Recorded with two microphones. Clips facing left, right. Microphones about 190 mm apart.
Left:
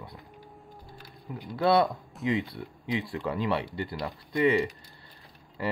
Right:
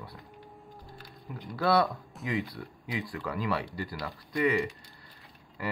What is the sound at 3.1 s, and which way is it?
Speech, 25° left (ahead or behind).